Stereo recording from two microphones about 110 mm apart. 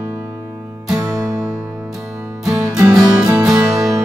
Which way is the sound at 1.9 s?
Centre (ahead or behind).